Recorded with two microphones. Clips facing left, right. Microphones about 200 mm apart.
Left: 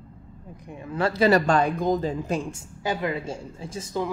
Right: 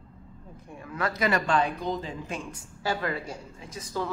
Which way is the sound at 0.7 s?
25° left (ahead or behind).